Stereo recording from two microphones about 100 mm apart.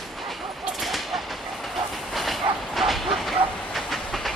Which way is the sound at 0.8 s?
Centre (ahead or behind).